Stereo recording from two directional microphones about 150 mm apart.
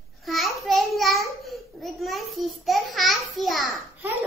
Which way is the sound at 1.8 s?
Centre (ahead or behind).